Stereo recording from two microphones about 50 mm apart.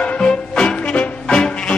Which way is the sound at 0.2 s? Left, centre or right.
Centre.